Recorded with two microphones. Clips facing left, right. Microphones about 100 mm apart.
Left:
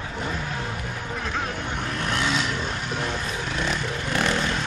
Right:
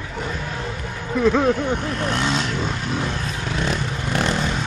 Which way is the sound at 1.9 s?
30° right (ahead or behind).